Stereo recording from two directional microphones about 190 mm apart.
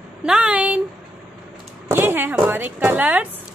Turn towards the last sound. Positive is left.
turn(degrees=-10)  # may be behind; listen again after turning